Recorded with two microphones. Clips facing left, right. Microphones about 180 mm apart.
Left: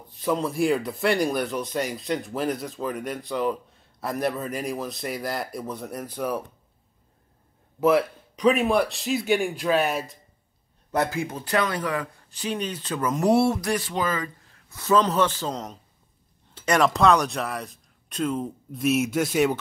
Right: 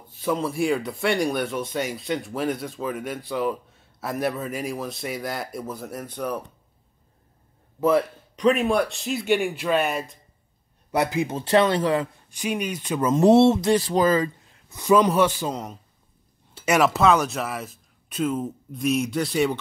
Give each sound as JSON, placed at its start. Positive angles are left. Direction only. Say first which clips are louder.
{"t": 0.1, "sound": "speech", "louder": "even", "side_deg": 0}
{"t": 7.8, "sound": "speech", "louder": "even", "side_deg": 0}
{"t": 10.9, "sound": "speech", "louder": "right 2 dB", "side_deg": -15}
{"t": 12.3, "sound": "speech", "louder": "right 2 dB", "side_deg": -10}
{"t": 14.4, "sound": "a man's voice", "louder": "right 3 dB", "side_deg": -20}